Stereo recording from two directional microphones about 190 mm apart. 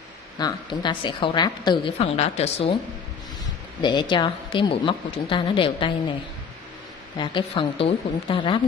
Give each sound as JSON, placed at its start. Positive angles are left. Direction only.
{"t": 0.4, "sound": "a woman's voice", "side_deg": 20}
{"t": 3.8, "sound": "a woman's voice", "side_deg": 25}
{"t": 7.2, "sound": "a woman's voice", "side_deg": 25}